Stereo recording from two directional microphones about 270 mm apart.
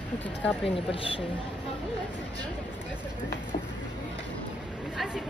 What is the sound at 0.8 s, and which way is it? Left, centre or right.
Speech, centre.